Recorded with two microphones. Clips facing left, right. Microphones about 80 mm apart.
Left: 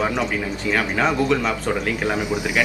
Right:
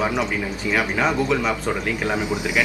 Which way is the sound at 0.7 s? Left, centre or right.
Centre.